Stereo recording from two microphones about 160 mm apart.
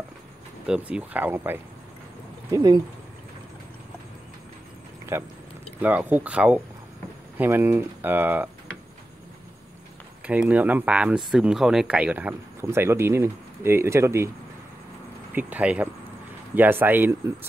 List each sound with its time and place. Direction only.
0.7 s speech: 5° right (ahead or behind)
5.1 s speech: 15° right (ahead or behind)
10.2 s speech: 10° right (ahead or behind)
15.3 s speech: 10° right (ahead or behind)